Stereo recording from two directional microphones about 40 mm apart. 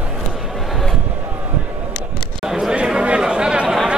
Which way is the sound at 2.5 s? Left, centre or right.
Centre.